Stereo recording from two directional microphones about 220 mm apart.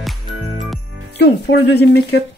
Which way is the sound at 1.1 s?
50° left (ahead or behind).